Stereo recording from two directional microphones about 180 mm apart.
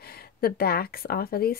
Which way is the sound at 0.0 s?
60° left (ahead or behind).